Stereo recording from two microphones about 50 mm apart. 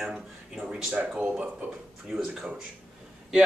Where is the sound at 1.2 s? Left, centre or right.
Right.